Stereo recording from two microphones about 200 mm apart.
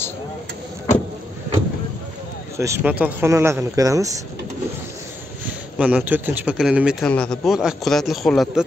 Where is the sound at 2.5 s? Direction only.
15° right (ahead or behind).